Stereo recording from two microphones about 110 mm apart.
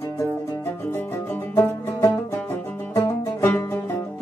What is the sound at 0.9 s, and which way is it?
Music, 20° left (ahead or behind).